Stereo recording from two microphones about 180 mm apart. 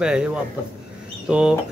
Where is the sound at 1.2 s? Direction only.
5° right (ahead or behind).